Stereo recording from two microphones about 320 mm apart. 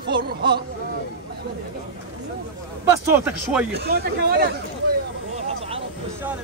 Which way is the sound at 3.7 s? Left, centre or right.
Right.